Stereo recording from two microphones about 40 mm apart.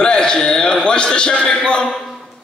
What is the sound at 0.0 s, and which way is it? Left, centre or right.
A man's voice, left.